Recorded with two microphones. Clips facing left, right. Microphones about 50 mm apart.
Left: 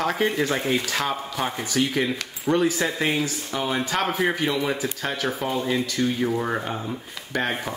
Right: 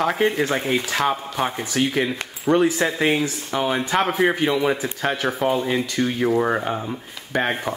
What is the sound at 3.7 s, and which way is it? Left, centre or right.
Speech, centre.